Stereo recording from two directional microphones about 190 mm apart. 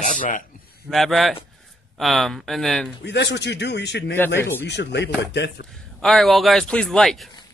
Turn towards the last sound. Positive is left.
turn(degrees=0)  # may be behind; listen again after turning